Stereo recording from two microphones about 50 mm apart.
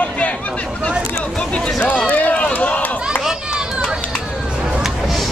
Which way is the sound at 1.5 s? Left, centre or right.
Left.